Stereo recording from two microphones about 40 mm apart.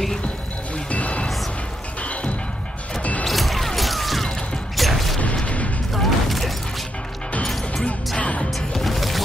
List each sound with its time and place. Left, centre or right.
0.8 s music: left
3.3 s music: centre
5.3 s a sound: left
6.0 s mechanisms: centre
7.4 s music: centre
8.2 s music: left
8.5 s music: centre